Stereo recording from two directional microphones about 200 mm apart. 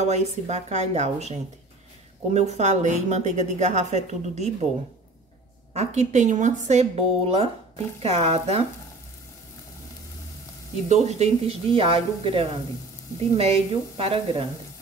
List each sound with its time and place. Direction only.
0.0 s speech: 35° right (ahead or behind)
2.3 s speech: 35° right (ahead or behind)
5.7 s speech: 35° right (ahead or behind)
10.9 s speech: 35° right (ahead or behind)